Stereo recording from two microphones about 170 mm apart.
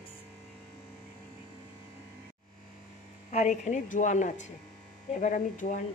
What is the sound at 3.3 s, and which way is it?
A woman's voice, 40° left (ahead or behind).